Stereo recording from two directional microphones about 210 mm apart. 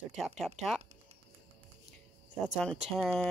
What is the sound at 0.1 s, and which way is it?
Speech, centre (ahead or behind).